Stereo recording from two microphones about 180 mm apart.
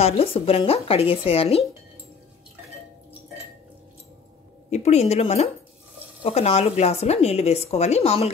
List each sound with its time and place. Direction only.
0.0 s speech: 35° left (ahead or behind)
4.6 s speech: 40° left (ahead or behind)